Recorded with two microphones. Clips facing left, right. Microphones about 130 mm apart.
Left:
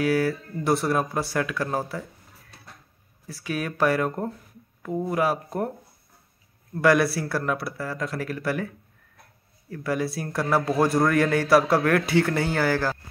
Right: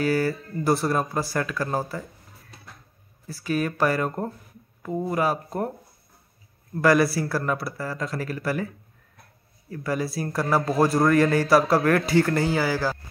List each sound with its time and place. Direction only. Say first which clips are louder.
0.0 s a man's voice: even; centre (ahead or behind)
3.3 s a man's voice: right 4 dB; centre (ahead or behind)
6.7 s a man's voice: right 1 dB; centre (ahead or behind)
9.7 s a man's voice: left 1 dB; centre (ahead or behind)